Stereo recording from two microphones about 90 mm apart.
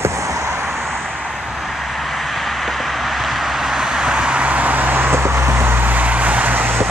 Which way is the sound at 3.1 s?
Centre (ahead or behind).